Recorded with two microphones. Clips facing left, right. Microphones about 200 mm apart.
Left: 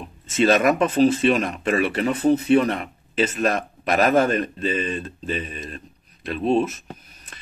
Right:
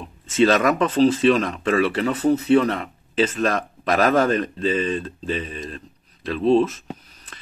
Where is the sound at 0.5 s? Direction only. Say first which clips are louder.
Left 1 dB; 20° left (ahead or behind).